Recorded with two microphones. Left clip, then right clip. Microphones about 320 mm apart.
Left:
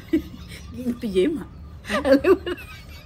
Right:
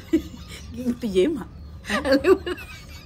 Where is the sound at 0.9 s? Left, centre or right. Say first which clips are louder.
Even; centre.